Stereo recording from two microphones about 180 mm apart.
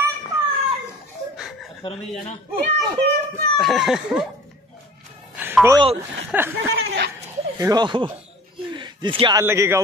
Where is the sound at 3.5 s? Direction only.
Centre (ahead or behind).